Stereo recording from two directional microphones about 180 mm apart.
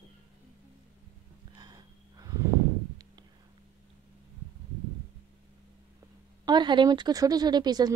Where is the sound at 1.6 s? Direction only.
20° right (ahead or behind).